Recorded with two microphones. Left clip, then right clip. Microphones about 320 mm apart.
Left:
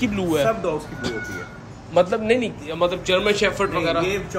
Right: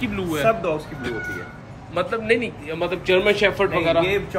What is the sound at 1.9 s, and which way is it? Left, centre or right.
A man's voice, centre.